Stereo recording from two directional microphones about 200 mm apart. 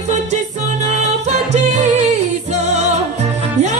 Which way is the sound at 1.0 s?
35° right (ahead or behind).